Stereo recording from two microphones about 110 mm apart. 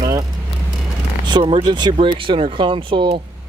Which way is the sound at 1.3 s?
45° right (ahead or behind).